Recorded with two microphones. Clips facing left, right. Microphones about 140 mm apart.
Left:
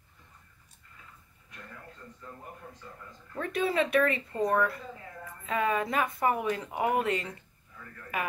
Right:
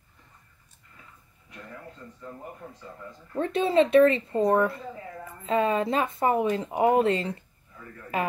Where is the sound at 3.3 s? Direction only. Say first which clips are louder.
Right 6 dB; 25° right (ahead or behind).